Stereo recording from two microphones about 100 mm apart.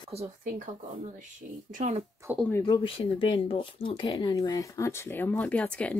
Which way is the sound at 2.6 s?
55° left (ahead or behind).